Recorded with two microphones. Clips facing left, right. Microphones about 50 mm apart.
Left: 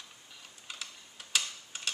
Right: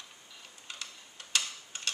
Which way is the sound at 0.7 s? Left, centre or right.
Centre.